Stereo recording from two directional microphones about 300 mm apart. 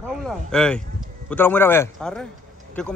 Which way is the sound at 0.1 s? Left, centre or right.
Centre.